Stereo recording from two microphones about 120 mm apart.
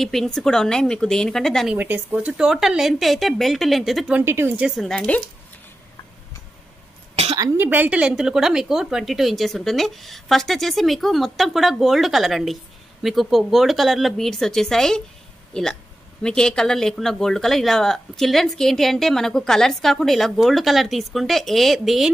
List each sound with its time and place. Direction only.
0.0 s speech: 5° left (ahead or behind)
1.8 s speech: 15° right (ahead or behind)
4.1 s speech: 20° right (ahead or behind)
4.6 s speech: centre (ahead or behind)
7.5 s speech: 15° right (ahead or behind)